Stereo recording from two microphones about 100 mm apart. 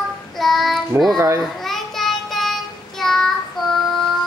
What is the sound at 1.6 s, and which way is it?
Child singing, 5° left (ahead or behind).